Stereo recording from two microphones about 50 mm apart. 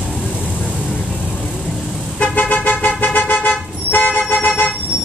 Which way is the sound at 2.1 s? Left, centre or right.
Left.